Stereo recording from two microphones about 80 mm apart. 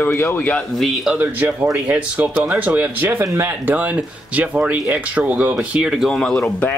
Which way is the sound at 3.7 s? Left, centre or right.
Centre.